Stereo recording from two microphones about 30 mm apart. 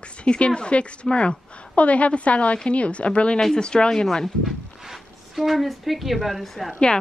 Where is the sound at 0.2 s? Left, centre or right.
Left.